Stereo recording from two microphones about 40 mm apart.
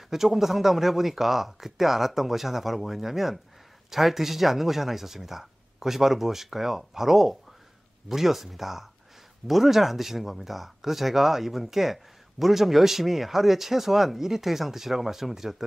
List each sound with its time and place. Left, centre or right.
0.1 s speech: centre